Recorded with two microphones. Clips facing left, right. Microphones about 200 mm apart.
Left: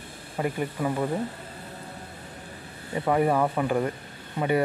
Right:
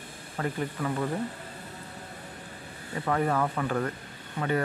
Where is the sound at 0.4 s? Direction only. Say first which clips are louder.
Left 3 dB; 15° left (ahead or behind).